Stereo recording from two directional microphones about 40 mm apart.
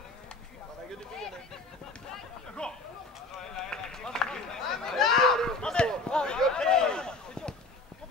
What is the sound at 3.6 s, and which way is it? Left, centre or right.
Run, centre.